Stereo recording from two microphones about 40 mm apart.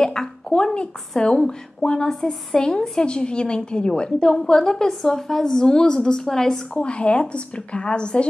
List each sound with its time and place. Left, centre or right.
0.0 s a sound: centre
1.1 s a woman's voice: centre
6.7 s speech: left